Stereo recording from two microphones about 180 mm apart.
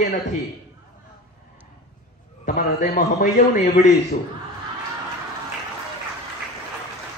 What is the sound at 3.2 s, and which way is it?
Speech, 45° left (ahead or behind).